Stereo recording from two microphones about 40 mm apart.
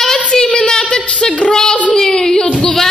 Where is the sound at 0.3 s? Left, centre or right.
Centre.